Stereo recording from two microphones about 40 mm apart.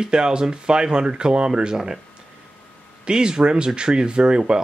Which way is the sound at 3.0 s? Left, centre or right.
Centre.